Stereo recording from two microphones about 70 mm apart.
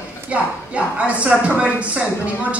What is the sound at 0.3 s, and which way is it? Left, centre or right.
A woman's voice, centre.